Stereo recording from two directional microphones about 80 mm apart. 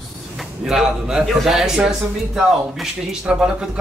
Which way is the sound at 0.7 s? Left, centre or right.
Centre.